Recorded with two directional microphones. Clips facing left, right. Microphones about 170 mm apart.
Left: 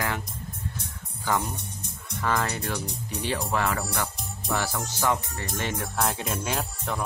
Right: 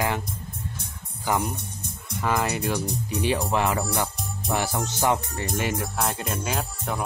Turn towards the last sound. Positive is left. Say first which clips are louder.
# right 1 dB
turn(degrees=0)  # may be behind; listen again after turning